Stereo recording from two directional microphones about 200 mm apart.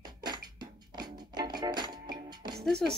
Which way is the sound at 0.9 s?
20° right (ahead or behind).